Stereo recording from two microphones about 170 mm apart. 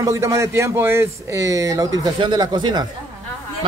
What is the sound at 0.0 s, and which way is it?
Speech, 20° right (ahead or behind).